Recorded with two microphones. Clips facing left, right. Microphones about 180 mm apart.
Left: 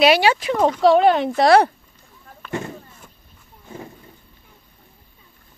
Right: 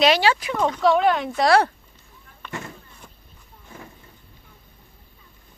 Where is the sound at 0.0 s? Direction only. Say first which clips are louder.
Left 3 dB; 10° left (ahead or behind).